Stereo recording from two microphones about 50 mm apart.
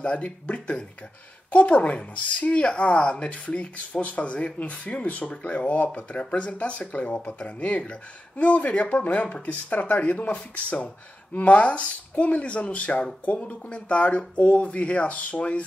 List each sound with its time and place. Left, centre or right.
0.0 s speech: left